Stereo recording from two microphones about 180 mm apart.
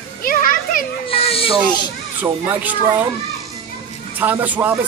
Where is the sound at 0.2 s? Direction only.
50° left (ahead or behind).